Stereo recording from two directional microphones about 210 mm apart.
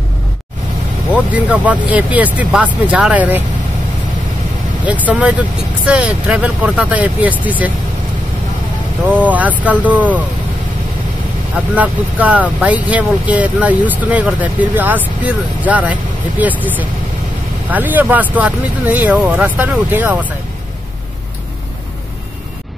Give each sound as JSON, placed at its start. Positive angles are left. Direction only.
{"t": 1.1, "sound": "speech", "side_deg": -5}
{"t": 4.8, "sound": "speech", "side_deg": -5}
{"t": 9.0, "sound": "speech", "side_deg": -5}
{"t": 11.7, "sound": "speech", "side_deg": -5}
{"t": 17.6, "sound": "speech", "side_deg": -10}